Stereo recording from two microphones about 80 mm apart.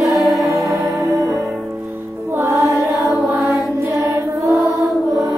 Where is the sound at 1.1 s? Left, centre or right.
Right.